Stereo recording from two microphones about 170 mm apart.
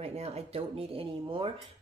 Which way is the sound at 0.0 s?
35° right (ahead or behind).